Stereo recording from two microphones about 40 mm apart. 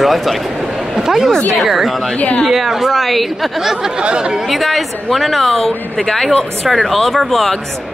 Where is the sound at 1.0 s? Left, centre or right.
Centre.